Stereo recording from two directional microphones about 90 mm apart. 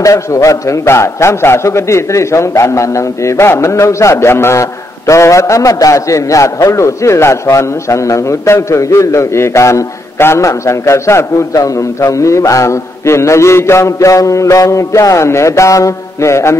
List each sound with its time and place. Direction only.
0.0 s a man's voice: 35° left (ahead or behind)